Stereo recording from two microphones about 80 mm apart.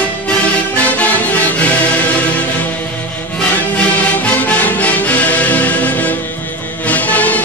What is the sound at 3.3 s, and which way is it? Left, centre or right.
Music, centre.